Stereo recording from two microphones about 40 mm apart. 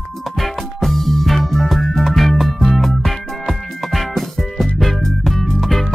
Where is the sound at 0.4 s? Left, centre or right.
Centre.